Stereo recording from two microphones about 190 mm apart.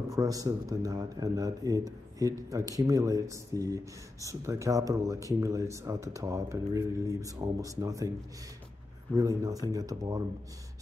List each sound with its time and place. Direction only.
0.1 s speech: 20° right (ahead or behind)
9.7 s speech: 20° right (ahead or behind)